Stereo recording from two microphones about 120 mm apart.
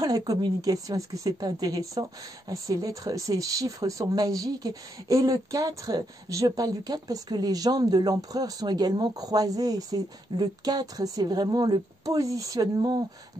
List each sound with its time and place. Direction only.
0.0 s speech: 30° right (ahead or behind)